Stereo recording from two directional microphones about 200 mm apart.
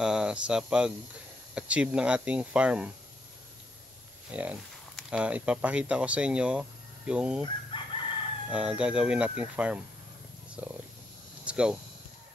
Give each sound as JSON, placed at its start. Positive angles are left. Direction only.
{"t": 0.0, "sound": "speech", "side_deg": -5}
{"t": 4.3, "sound": "speech", "side_deg": -5}
{"t": 7.7, "sound": "crowing", "side_deg": 25}
{"t": 8.5, "sound": "speech", "side_deg": -5}